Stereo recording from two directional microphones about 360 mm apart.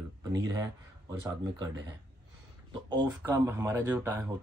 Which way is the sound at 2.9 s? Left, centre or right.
Centre.